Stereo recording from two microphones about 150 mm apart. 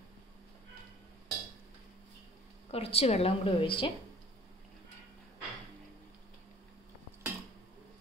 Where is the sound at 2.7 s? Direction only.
40° left (ahead or behind).